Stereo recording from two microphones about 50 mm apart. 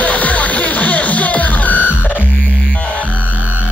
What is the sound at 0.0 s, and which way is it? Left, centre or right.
Music, left.